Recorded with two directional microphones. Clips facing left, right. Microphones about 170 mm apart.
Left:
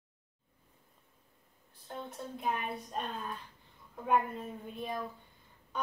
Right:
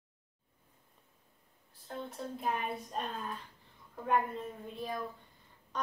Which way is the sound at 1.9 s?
Centre (ahead or behind).